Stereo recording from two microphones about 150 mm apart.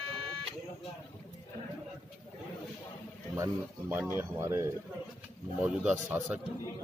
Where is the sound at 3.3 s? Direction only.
15° right (ahead or behind).